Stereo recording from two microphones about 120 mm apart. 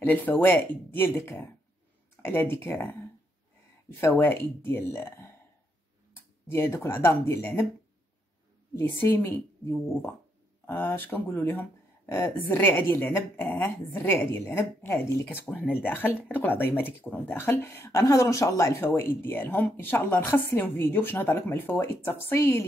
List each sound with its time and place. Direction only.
0.0 s a woman's voice: 15° left (ahead or behind)
4.0 s a woman's voice: 20° left (ahead or behind)
6.5 s a woman's voice: 20° left (ahead or behind)
8.7 s a woman's voice: 20° left (ahead or behind)